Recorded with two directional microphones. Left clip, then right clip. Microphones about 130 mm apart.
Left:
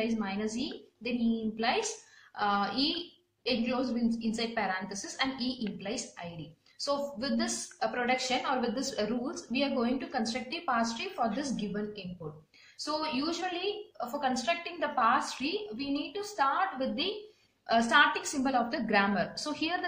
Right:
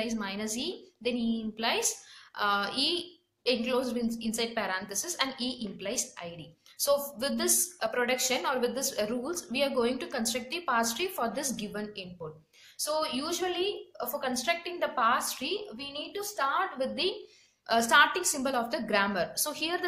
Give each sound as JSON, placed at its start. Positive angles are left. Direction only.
{"t": 0.0, "sound": "a woman's voice", "side_deg": -25}